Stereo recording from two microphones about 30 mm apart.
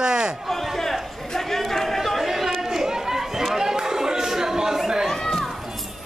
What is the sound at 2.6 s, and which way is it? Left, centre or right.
Chatter, centre.